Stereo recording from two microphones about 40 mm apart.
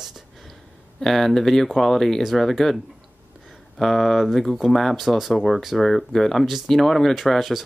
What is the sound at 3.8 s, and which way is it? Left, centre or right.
Speech, centre.